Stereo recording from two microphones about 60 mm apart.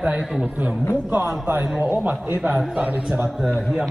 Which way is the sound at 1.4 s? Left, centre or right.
Right.